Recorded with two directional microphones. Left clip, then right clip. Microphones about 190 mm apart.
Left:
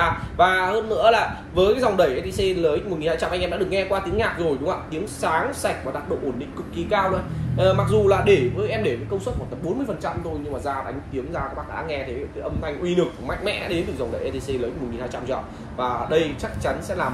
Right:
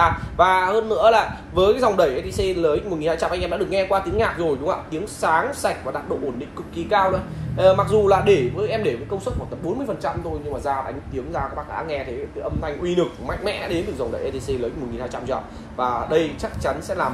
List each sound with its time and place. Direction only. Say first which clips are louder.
0.0 s a man's voice: right 2 dB; 35° right (ahead or behind)
6.9 s a man's voice: right 3 dB; 30° right (ahead or behind)
12.6 s a man's voice: even; 35° right (ahead or behind)
15.8 s a man's voice: right 1 dB; 35° right (ahead or behind)